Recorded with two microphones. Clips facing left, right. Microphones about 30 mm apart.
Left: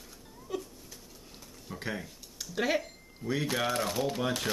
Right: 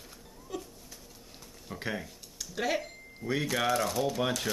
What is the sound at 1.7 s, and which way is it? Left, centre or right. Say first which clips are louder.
Speech: right 1 dB; centre.